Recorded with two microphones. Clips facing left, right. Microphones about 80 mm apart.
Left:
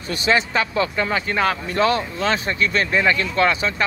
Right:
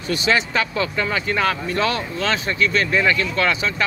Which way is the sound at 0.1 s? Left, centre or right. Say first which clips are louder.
Even; left.